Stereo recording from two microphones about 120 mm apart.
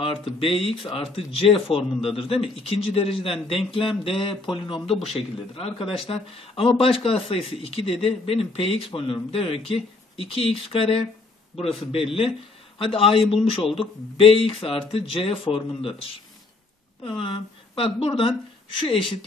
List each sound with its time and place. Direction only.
0.0 s speech: 50° left (ahead or behind)
17.2 s speech: 50° left (ahead or behind)